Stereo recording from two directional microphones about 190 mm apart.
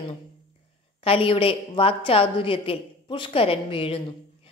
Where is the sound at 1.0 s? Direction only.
30° left (ahead or behind).